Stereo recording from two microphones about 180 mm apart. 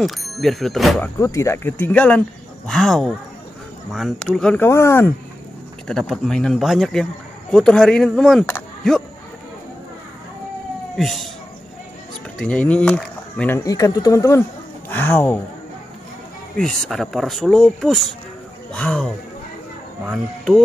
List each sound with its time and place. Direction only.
0.0 s speech: centre (ahead or behind)
1.2 s speech: 15° left (ahead or behind)
5.9 s speech: 5° left (ahead or behind)
11.0 s speech: centre (ahead or behind)
12.4 s speech: 5° left (ahead or behind)
16.5 s speech: centre (ahead or behind)